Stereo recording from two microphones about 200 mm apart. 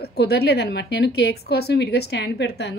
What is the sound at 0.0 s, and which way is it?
A woman's voice, 55° left (ahead or behind).